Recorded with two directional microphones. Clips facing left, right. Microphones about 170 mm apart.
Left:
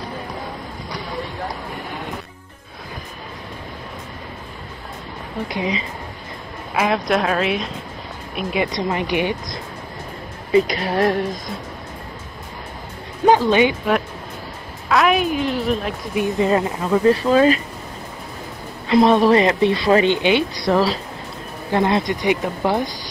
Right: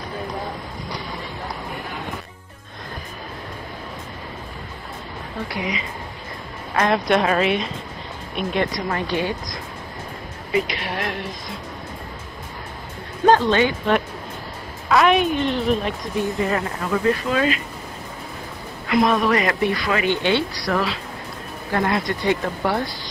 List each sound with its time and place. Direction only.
5.5 s speech: 25° left (ahead or behind)
6.7 s speech: 5° left (ahead or behind)
8.7 s speech: 20° left (ahead or behind)
10.5 s a woman's voice: 35° left (ahead or behind)
13.2 s speech: 10° left (ahead or behind)
14.9 s a woman's voice: centre (ahead or behind)
16.2 s speech: 20° left (ahead or behind)
18.9 s speech: 30° left (ahead or behind)
20.2 s speech: 15° left (ahead or behind)